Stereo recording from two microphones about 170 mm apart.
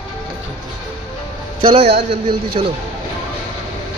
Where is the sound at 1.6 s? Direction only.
35° right (ahead or behind).